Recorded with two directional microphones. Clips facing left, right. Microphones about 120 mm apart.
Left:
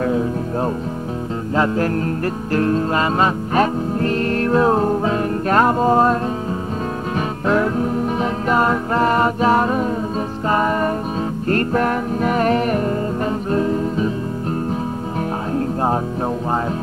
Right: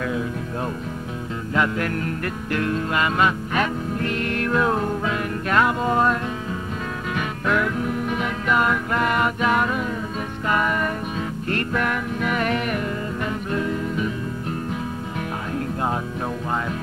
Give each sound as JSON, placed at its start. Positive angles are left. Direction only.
{"t": 0.0, "sound": "music", "side_deg": 35}
{"t": 7.2, "sound": "music", "side_deg": 35}